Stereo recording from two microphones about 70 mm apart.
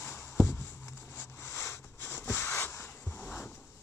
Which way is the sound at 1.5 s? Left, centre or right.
Left.